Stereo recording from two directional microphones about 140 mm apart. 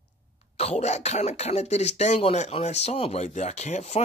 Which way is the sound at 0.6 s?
50° left (ahead or behind).